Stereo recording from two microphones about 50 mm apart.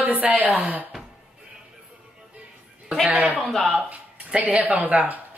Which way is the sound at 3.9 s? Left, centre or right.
Right.